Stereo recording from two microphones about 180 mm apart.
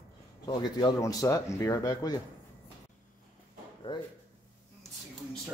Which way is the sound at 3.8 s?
30° left (ahead or behind).